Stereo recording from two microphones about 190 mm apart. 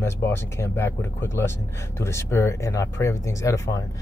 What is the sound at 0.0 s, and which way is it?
Speech, 15° left (ahead or behind).